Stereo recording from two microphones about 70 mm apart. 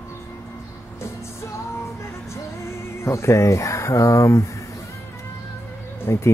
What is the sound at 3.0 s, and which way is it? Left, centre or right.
Speech, left.